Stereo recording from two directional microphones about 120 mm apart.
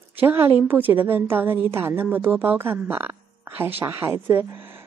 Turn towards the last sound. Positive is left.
turn(degrees=-20)  # may be behind; listen again after turning